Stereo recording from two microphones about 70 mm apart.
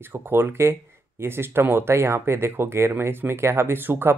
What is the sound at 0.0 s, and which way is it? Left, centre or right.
Speech, right.